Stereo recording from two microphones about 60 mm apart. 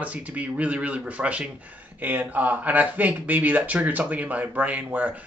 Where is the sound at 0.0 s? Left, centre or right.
Right.